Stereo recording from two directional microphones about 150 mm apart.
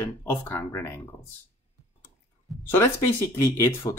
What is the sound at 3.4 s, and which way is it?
Speech, 20° left (ahead or behind).